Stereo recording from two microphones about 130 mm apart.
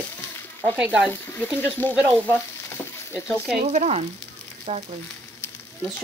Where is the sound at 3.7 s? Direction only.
60° right (ahead or behind).